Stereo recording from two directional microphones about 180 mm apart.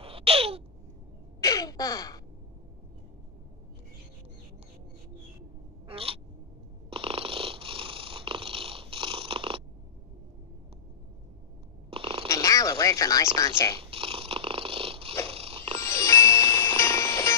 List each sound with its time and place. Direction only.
0.0 s a sound: 30° right (ahead or behind)
1.4 s gasp: 20° left (ahead or behind)
5.9 s crow: 30° right (ahead or behind)
6.9 s purr: 30° right (ahead or behind)
11.9 s cat: 30° right (ahead or behind)
12.3 s a sound: 20° left (ahead or behind)
13.7 s dog: 30° right (ahead or behind)
15.2 s a sound: 30° right (ahead or behind)
15.8 s music: 15° left (ahead or behind)